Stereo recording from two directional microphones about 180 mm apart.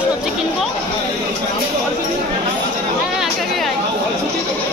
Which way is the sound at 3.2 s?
Centre (ahead or behind).